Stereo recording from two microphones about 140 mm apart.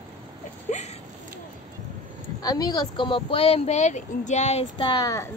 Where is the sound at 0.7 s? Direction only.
55° left (ahead or behind).